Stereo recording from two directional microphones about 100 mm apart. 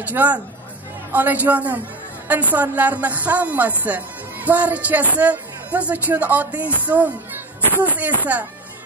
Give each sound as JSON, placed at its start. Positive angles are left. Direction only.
{"t": 0.0, "sound": "a woman's voice", "side_deg": -15}